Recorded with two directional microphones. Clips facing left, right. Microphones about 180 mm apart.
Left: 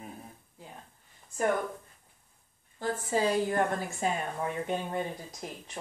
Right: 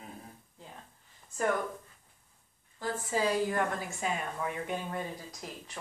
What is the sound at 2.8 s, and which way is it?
A woman's voice, 25° left (ahead or behind).